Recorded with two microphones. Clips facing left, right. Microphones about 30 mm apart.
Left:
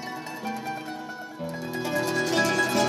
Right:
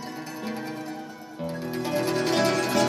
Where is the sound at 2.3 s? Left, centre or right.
Centre.